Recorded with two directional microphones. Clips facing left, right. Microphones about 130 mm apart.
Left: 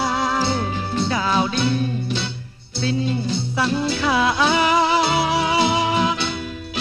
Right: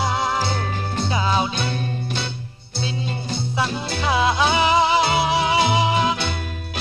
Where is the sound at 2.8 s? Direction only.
20° right (ahead or behind).